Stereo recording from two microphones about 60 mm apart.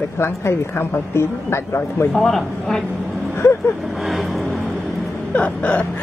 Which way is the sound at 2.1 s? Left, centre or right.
Centre.